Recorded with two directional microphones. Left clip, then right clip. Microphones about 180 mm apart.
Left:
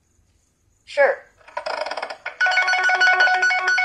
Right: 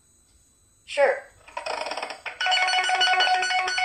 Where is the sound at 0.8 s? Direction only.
15° left (ahead or behind).